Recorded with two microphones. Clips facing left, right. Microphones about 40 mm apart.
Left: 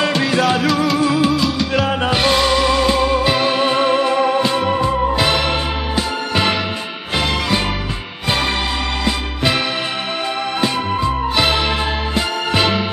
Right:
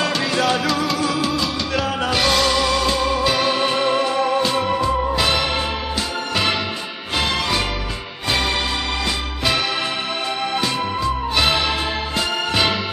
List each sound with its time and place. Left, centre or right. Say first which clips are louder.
0.2 s music: left 3 dB; centre
1.9 s music: left 1 dB; left
10.6 s music: left 3 dB; left